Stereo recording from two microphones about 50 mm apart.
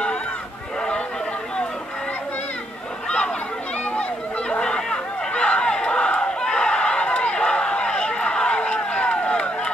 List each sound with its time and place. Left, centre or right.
3.8 s chatter: left